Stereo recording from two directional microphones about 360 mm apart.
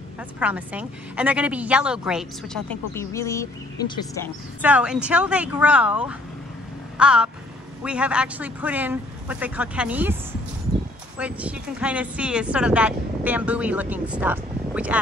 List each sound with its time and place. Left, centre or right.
0.4 s speech: centre
4.6 s speech: centre
7.0 s a sound: centre
7.8 s speech: centre
11.1 s speech: centre